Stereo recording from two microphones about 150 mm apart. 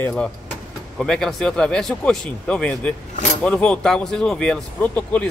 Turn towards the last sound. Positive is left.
turn(degrees=10)  # may be behind; listen again after turning